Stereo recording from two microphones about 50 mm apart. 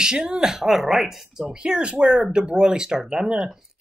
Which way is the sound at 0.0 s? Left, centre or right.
Centre.